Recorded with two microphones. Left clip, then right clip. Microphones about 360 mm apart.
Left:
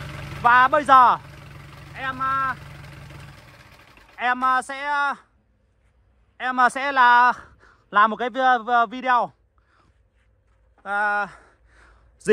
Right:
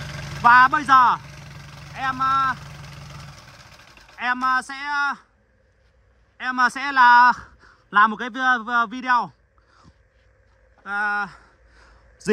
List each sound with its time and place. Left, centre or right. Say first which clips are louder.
0.0 s a sound: right 2 dB; right
0.4 s a man's voice: right 2 dB; centre
1.2 s vehicle: right 2 dB; right
2.0 s speech: right 3 dB; centre
2.6 s vehicle: right 2 dB; right
4.2 s a man's voice: left 1 dB; centre
6.3 s a man's voice: left 1 dB; centre
10.8 s a sound: left 1 dB; centre